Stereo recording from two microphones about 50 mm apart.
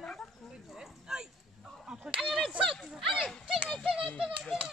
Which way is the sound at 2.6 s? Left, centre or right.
Centre.